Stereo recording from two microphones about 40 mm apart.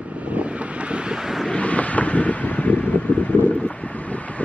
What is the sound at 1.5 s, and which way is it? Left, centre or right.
Wind noise, left.